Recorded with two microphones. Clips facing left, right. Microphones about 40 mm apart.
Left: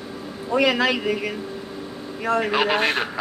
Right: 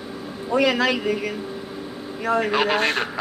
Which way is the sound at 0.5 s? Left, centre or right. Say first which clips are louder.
Even; centre.